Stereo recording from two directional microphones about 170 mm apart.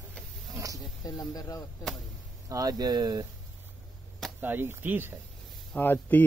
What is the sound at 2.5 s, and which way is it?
Speech, 20° right (ahead or behind).